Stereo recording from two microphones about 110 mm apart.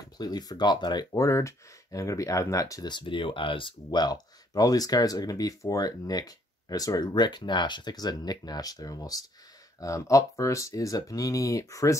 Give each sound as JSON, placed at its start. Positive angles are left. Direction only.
{"t": 0.2, "sound": "speech", "side_deg": 40}